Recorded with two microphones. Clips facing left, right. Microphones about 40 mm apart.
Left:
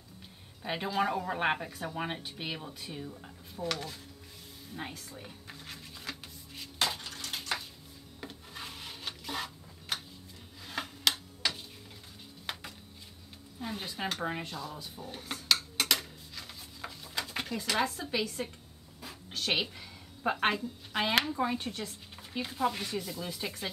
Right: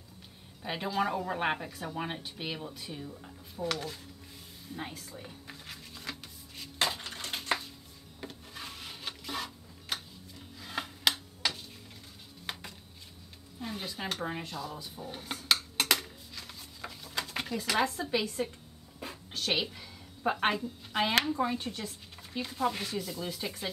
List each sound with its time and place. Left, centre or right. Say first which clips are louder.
0.6 s a woman's voice: even; centre
4.7 s music: even; centre
7.0 s a sound: right 1 dB; right
8.2 s rub: even; centre
10.6 s scissors: right 1 dB; centre
12.5 s music: even; centre
13.6 s speech: left 1 dB; centre
15.0 s dishes: right 1 dB; centre
15.8 s a sound: right 1 dB; centre
16.3 s a sound: left 1 dB; centre
17.6 s a woman's voice: right 2 dB; centre
19.3 s a woman's voice: even; centre